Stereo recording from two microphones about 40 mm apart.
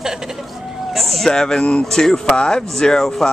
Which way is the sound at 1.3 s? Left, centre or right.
Centre.